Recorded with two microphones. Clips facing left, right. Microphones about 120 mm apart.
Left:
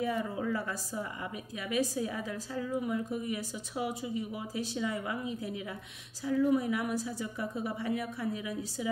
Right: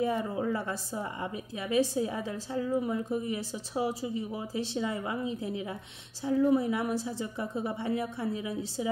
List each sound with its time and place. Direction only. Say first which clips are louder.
0.0 s a woman's voice: right 3 dB; 30° right (ahead or behind)